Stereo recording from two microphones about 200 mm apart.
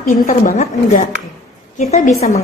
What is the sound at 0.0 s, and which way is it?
A woman's voice, 40° left (ahead or behind).